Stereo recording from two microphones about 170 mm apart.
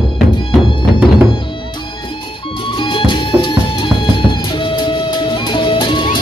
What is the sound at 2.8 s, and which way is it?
Music, 30° left (ahead or behind).